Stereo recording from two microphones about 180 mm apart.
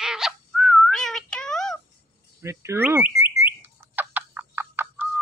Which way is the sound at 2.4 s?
15° right (ahead or behind).